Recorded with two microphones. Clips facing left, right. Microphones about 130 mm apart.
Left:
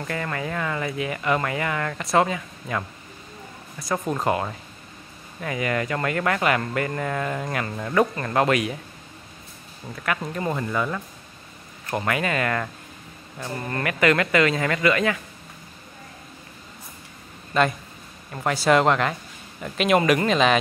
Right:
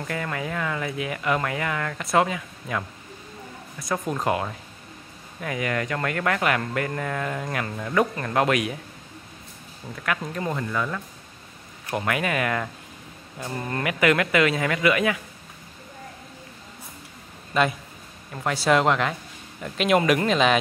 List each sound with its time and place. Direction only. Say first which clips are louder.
0.0 s speech: left 1 dB; centre (ahead or behind)
3.8 s speech: left 1 dB; 5° left (ahead or behind)
10.0 s speech: left 1 dB; 5° left (ahead or behind)
11.9 s speech: left 1 dB; centre (ahead or behind)
17.5 s speech: left 1 dB; 5° right (ahead or behind)